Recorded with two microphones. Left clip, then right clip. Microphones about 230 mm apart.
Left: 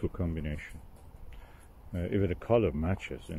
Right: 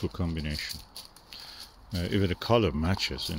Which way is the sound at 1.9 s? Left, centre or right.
Centre.